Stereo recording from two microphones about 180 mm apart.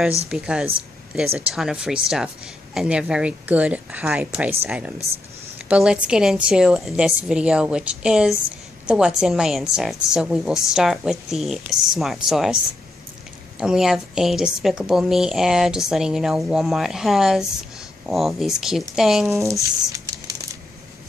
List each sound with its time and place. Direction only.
0.3 s a woman's voice: 5° right (ahead or behind)
13.6 s a woman's voice: 5° right (ahead or behind)
19.2 s speech: 15° right (ahead or behind)